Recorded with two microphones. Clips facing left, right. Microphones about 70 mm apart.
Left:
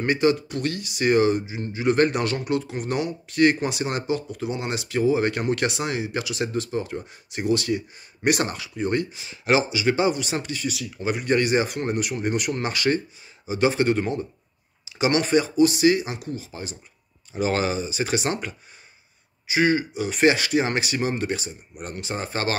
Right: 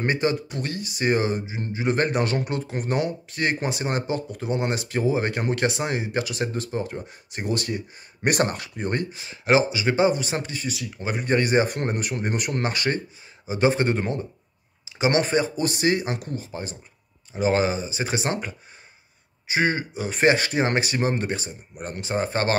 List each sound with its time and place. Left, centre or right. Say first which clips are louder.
0.0 s speech: left 3 dB; right
17.3 s speech: right 2 dB; right